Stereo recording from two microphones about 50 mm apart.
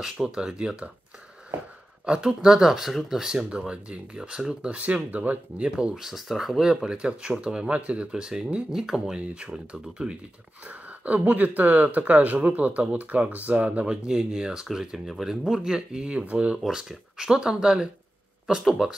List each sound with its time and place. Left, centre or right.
0.0 s speech: centre
2.0 s speech: centre
3.4 s speech: right
5.6 s speech: right
5.9 s speech: centre; by 13.8 s right
13.8 s speech: centre
16.1 s speech: right
16.5 s speech: centre